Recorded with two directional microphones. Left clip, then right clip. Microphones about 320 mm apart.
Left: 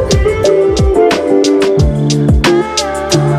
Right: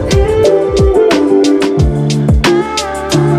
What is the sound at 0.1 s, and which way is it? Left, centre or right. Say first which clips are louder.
Music: right 4 dB; centre.